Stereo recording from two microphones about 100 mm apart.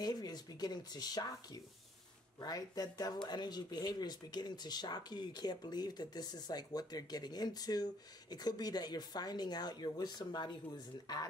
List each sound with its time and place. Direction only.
0.0 s speech: 40° left (ahead or behind)